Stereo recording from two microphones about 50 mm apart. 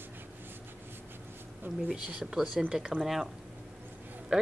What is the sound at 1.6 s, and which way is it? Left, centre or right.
Speech, right.